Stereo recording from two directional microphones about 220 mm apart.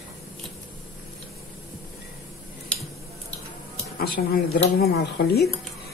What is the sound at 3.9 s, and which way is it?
Speech, 45° left (ahead or behind).